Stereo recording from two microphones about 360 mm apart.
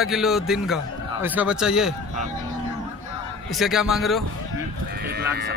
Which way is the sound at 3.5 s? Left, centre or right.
Centre.